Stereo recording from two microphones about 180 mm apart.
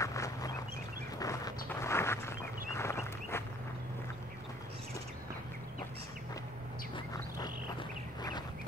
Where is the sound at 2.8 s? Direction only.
15° left (ahead or behind).